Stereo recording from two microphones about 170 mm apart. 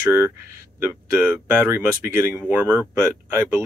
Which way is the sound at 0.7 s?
10° right (ahead or behind).